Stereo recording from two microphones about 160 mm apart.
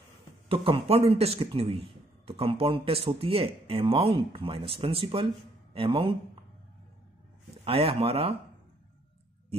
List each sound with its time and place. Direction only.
0.5 s speech: 35° right (ahead or behind)
7.5 s speech: 35° right (ahead or behind)